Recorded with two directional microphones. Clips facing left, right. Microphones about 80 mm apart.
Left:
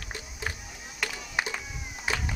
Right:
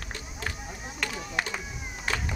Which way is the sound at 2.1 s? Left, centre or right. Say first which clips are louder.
Even; centre.